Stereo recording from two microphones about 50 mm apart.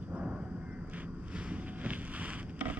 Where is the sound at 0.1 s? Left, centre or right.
Right.